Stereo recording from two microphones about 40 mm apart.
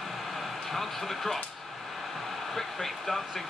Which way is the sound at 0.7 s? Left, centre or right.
Centre.